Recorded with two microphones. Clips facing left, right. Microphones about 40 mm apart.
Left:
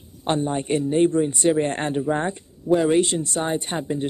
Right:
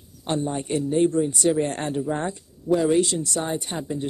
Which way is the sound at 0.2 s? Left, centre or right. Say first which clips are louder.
Left 3 dB; left.